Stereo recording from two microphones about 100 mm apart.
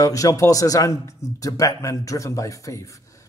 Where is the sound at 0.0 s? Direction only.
35° left (ahead or behind).